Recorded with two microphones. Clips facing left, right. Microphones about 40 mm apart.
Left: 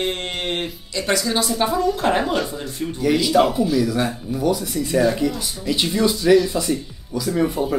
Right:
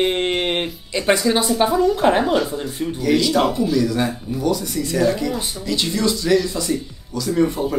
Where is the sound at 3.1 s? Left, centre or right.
Centre.